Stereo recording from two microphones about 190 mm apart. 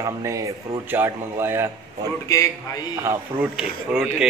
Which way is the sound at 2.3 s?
15° left (ahead or behind).